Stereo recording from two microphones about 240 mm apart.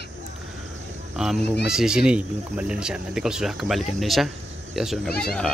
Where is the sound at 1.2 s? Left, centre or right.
Centre.